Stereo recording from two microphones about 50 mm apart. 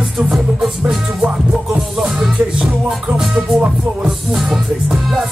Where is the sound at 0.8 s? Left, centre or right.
Right.